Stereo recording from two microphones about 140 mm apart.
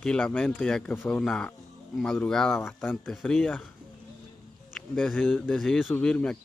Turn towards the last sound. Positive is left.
turn(degrees=5)  # may be behind; listen again after turning